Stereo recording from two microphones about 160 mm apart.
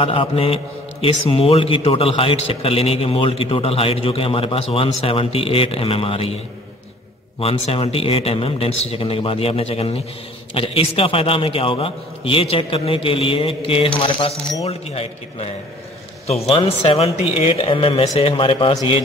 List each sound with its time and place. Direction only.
0.0 s a man's voice: 35° left (ahead or behind)
7.3 s a man's voice: 35° left (ahead or behind)